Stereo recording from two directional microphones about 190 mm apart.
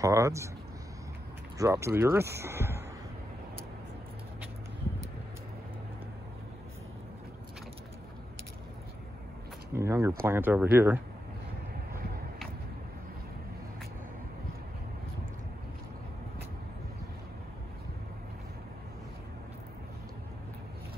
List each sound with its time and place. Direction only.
0.0 s speech: 15° right (ahead or behind)
1.6 s speech: 15° right (ahead or behind)
9.7 s speech: 15° right (ahead or behind)